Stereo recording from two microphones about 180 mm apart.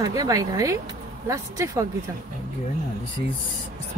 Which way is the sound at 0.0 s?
20° right (ahead or behind).